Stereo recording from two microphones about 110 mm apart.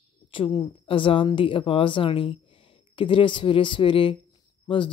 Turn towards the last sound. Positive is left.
turn(degrees=50)  # may be behind; listen again after turning